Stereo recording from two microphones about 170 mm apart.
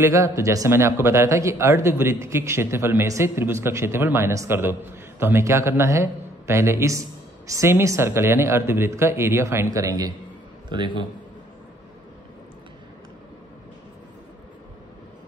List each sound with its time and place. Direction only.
0.0 s a man's voice: 20° right (ahead or behind)